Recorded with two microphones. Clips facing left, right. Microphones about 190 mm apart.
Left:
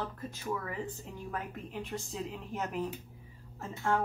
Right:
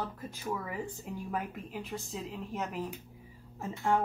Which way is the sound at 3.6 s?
15° right (ahead or behind).